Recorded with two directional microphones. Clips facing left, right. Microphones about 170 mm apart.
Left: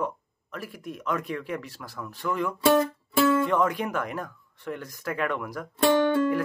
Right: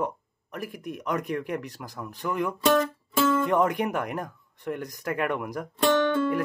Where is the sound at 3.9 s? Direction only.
15° right (ahead or behind).